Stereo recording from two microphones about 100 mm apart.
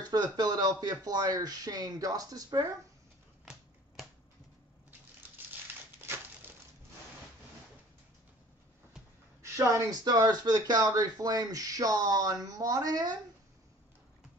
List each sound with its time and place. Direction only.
0.0 s speech: 45° right (ahead or behind)
5.4 s crumpling: 20° right (ahead or behind)
5.9 s a sound: 20° right (ahead or behind)
9.4 s speech: 30° right (ahead or behind)